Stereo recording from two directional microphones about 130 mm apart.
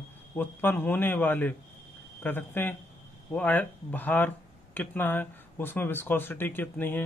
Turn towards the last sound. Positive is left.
turn(degrees=15)  # may be behind; listen again after turning